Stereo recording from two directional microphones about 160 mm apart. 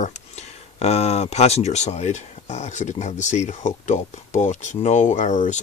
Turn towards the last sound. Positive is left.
turn(degrees=45)  # may be behind; listen again after turning